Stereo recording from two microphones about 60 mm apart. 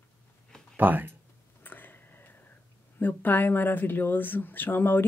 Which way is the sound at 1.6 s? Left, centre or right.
Left.